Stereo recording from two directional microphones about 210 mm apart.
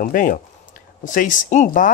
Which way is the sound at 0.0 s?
40° left (ahead or behind).